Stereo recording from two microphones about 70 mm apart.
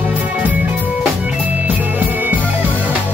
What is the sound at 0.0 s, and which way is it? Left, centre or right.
Music, right.